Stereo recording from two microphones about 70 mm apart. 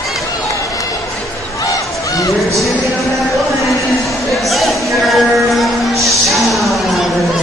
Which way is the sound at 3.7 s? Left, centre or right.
Centre.